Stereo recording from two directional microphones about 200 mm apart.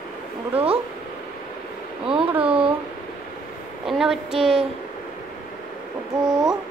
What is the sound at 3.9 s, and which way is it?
Speech, centre (ahead or behind).